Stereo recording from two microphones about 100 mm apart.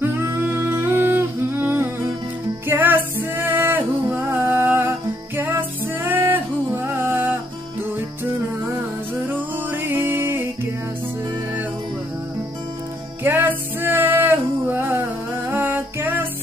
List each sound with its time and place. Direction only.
0.0 s humming: 25° right (ahead or behind)
2.6 s music: 20° right (ahead or behind)
9.7 s music: 20° right (ahead or behind)
13.2 s music: 20° right (ahead or behind)